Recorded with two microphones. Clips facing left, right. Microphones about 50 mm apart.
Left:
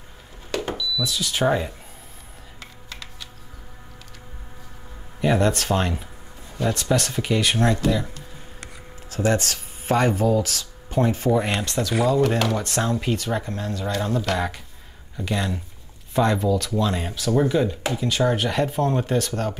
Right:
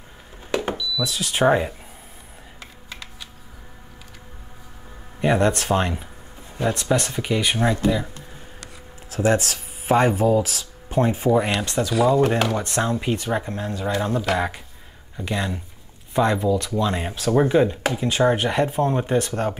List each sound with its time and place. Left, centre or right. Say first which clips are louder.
0.5 s smoke detector: right 3 dB; centre
1.0 s speech: right 3 dB; right
2.6 s computer keyboard: right 1 dB; centre
5.2 s speech: right 1 dB; centre
9.1 s speech: right 2 dB; centre
10.1 s speech: right 2 dB; right
10.4 s speech: even; centre
17.1 s speech: right 4 dB; right